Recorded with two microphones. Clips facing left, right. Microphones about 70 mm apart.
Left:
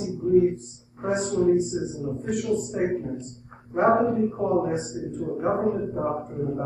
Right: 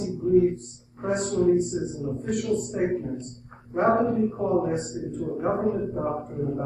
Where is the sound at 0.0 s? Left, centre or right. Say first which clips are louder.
Even; centre.